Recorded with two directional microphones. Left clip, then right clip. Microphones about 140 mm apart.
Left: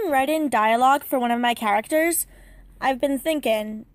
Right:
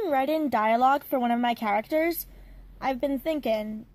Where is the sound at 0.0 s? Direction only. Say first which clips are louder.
Left 4 dB; 20° left (ahead or behind).